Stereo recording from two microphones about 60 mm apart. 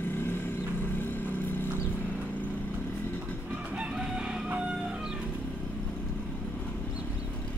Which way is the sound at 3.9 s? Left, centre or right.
Centre.